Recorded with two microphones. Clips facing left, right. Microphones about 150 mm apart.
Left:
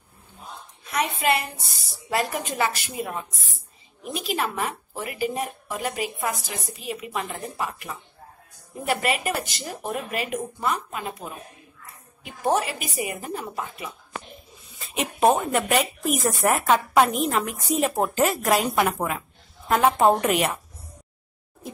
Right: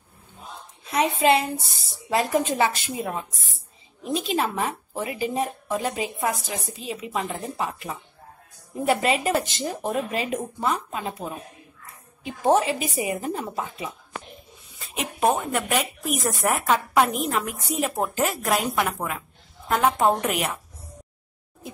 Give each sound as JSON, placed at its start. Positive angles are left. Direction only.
{"t": 0.8, "sound": "a woman's voice", "side_deg": -25}
{"t": 15.3, "sound": "speech", "side_deg": 0}